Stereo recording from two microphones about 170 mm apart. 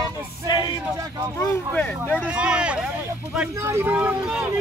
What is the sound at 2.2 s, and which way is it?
Speech, 5° right (ahead or behind).